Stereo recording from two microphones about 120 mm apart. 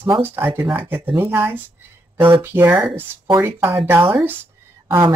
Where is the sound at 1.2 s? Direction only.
20° right (ahead or behind).